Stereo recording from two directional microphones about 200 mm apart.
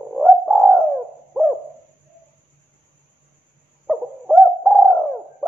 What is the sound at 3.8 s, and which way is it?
Bird, centre (ahead or behind).